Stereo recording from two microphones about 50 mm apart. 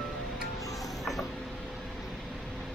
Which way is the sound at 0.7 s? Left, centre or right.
Centre.